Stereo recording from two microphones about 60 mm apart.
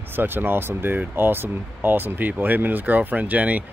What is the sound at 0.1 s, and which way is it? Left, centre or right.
Speech, right.